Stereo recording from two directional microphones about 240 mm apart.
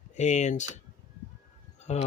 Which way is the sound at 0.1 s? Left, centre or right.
Left.